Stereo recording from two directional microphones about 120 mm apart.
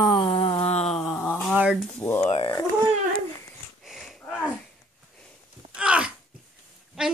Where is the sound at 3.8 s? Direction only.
Centre (ahead or behind).